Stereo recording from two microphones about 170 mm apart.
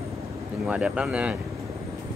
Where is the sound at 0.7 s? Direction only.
5° right (ahead or behind).